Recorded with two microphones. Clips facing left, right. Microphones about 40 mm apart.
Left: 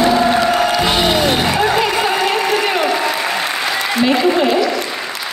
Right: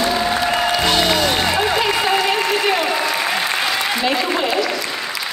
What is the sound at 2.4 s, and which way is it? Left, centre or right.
Applause, centre.